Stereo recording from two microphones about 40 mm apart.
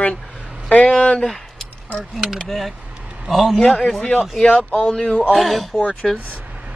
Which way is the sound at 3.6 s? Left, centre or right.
Left.